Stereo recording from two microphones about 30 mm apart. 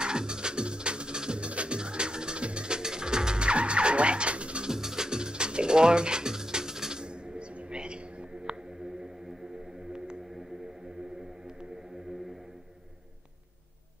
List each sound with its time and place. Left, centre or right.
0.0 s music: right
1.5 s music: right
1.8 s music: right
4.6 s music: centre; by 8.5 s right